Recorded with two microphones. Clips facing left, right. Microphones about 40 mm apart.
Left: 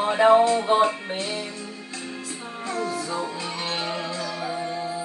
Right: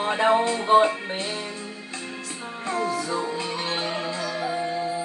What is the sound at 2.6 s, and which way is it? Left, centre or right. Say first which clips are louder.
Music: right 2 dB; right.